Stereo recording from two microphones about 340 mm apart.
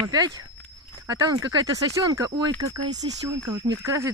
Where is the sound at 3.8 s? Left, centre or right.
Centre.